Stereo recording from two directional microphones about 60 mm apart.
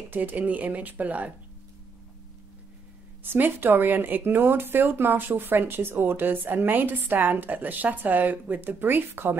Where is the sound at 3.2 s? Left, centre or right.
Right.